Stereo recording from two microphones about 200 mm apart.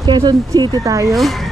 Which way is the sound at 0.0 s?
20° right (ahead or behind).